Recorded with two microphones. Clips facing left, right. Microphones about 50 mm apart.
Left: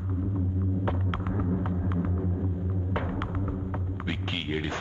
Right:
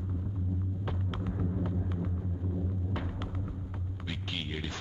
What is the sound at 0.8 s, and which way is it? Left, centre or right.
Throbbing, left.